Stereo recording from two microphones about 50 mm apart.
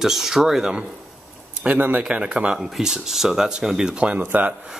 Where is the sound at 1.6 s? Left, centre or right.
Right.